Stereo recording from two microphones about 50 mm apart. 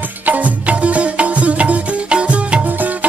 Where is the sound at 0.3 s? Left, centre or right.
Right.